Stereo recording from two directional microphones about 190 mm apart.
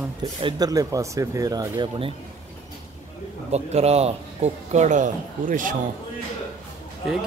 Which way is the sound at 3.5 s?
35° right (ahead or behind).